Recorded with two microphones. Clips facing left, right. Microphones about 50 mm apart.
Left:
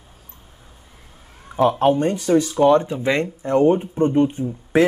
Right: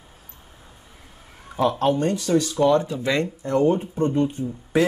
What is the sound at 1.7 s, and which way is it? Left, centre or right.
Speech, left.